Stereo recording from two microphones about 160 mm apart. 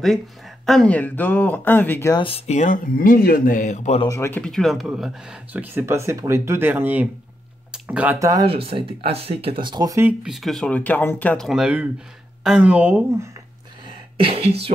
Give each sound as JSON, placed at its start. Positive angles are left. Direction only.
{"t": 0.7, "sound": "speech", "side_deg": 5}
{"t": 2.1, "sound": "speech", "side_deg": 35}
{"t": 4.1, "sound": "speech", "side_deg": 15}
{"t": 7.7, "sound": "a sound", "side_deg": -5}
{"t": 8.2, "sound": "speech", "side_deg": -20}
{"t": 8.5, "sound": "speech", "side_deg": -35}
{"t": 10.0, "sound": "speech", "side_deg": -5}
{"t": 11.4, "sound": "speech", "side_deg": -5}
{"t": 13.8, "sound": "a sound", "side_deg": -35}